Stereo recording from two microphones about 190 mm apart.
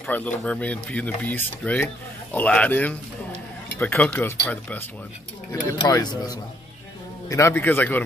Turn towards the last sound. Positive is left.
turn(degrees=10)  # may be behind; listen again after turning